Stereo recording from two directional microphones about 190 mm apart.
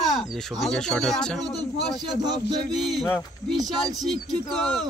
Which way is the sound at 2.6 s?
Centre (ahead or behind).